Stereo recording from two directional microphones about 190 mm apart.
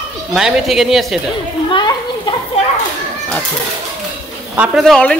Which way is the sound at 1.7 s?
25° left (ahead or behind).